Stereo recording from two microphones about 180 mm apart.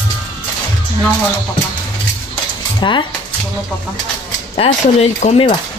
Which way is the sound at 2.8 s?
25° left (ahead or behind).